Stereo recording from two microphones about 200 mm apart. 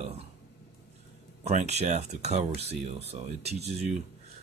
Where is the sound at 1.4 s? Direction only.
35° right (ahead or behind).